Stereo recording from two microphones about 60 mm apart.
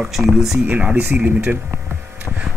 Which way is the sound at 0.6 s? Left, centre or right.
Right.